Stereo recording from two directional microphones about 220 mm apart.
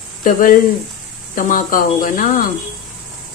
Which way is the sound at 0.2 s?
35° left (ahead or behind).